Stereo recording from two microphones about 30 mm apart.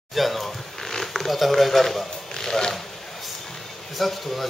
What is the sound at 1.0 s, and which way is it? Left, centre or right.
Speech, centre.